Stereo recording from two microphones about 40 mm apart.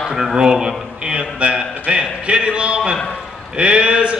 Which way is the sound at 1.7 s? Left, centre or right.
Right.